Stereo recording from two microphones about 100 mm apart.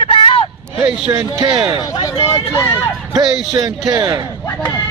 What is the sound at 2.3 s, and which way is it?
Vehicle, 60° left (ahead or behind).